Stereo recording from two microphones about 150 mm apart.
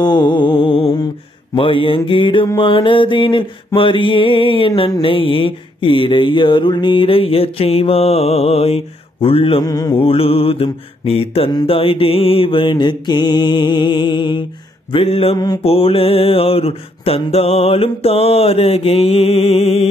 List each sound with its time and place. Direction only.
0.0 s music: 30° left (ahead or behind)
1.5 s mantra: 35° left (ahead or behind)
9.7 s mantra: 25° left (ahead or behind)
9.9 s mantra: 40° left (ahead or behind)
15.3 s mantra: 30° left (ahead or behind)
15.6 s mantra: 40° left (ahead or behind)